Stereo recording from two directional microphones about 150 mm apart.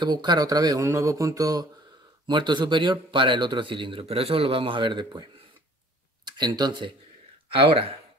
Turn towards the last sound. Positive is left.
turn(degrees=-40)  # may be behind; listen again after turning